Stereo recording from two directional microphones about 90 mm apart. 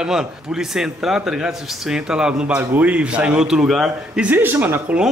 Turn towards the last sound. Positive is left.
turn(degrees=-20)  # may be behind; listen again after turning